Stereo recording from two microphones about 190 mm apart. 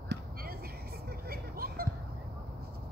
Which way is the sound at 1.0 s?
50° right (ahead or behind).